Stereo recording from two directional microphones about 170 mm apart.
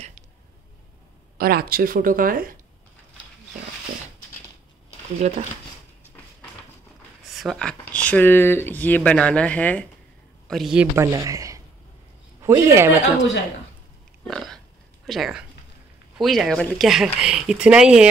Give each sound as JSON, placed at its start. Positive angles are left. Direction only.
{"t": 1.4, "sound": "speech", "side_deg": -60}
{"t": 5.2, "sound": "speech", "side_deg": -45}
{"t": 7.2, "sound": "speech", "side_deg": 0}
{"t": 10.5, "sound": "speech", "side_deg": -5}
{"t": 11.0, "sound": "speech", "side_deg": -20}
{"t": 14.2, "sound": "burping", "side_deg": 0}
{"t": 15.0, "sound": "speech", "side_deg": -5}